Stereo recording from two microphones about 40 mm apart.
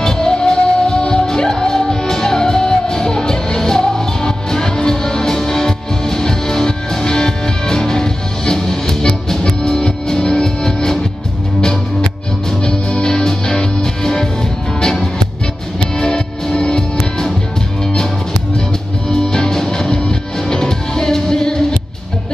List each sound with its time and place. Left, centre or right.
0.0 s music: centre
12.6 s music: centre
19.0 s music: centre